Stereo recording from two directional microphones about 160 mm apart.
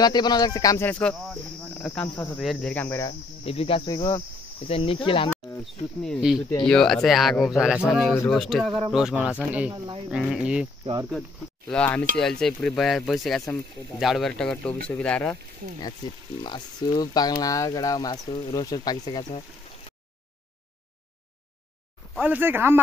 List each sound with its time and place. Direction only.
0.0 s speech: 25° left (ahead or behind)
0.8 s speech: 10° left (ahead or behind)
3.1 s cricket: 35° left (ahead or behind)
3.9 s speech: 20° left (ahead or behind)
4.6 s cricket: 35° left (ahead or behind)
5.6 s speech: centre (ahead or behind)
11.7 s speech: 10° left (ahead or behind)
16.4 s speech: 25° left (ahead or behind)
22.2 s speech: 10° right (ahead or behind)